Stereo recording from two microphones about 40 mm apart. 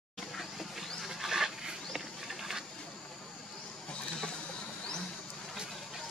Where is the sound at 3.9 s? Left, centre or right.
Left.